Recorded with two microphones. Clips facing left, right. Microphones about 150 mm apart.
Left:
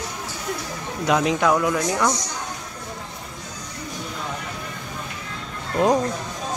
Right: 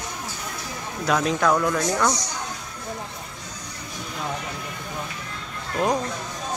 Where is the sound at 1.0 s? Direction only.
15° left (ahead or behind).